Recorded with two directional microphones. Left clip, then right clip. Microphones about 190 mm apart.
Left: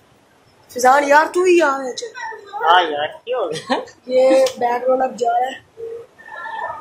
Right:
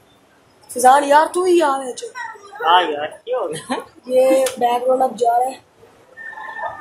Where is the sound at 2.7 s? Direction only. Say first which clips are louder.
Even; 10° left (ahead or behind).